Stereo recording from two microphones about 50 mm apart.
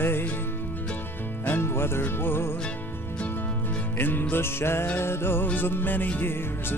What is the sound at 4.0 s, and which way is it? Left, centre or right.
Music, left.